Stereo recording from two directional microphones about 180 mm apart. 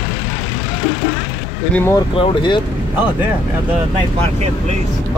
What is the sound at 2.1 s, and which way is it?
Speech, 25° left (ahead or behind).